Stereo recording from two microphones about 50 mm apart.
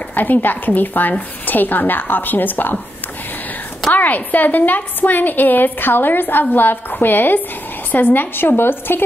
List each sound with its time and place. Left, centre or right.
0.1 s a woman's voice: left
3.9 s a woman's voice: left